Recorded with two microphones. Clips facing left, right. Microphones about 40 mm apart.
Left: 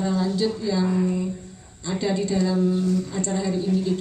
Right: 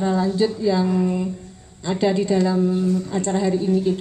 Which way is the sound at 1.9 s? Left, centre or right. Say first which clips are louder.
Right 5 dB; right.